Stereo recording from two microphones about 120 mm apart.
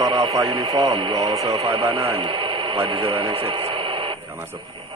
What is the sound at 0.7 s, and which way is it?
Speech, 35° right (ahead or behind).